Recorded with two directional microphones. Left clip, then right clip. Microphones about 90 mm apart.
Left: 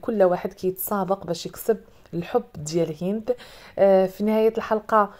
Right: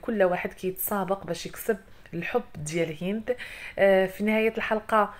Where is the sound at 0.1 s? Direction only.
40° left (ahead or behind).